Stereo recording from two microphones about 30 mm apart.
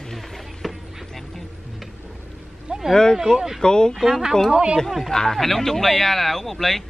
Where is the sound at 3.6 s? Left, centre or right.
Left.